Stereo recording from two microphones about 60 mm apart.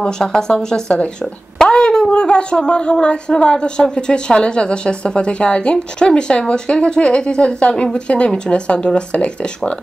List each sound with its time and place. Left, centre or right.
0.0 s speech: centre